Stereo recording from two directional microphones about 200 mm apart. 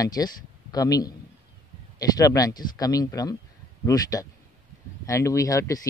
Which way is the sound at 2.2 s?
15° left (ahead or behind).